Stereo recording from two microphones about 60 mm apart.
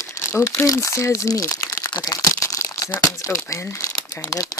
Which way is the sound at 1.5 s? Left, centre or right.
Left.